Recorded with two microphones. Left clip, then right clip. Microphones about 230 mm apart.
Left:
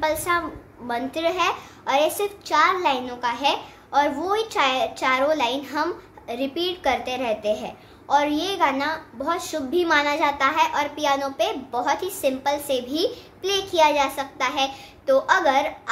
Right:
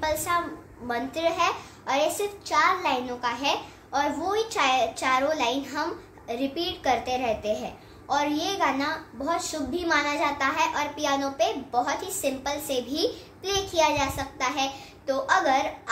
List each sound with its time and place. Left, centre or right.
0.0 s a woman's voice: left